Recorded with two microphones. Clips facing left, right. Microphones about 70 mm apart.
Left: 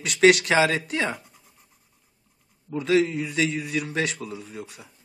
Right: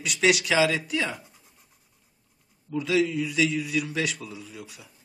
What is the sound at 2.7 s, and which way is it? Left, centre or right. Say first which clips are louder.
A man's voice: left 3 dB; left.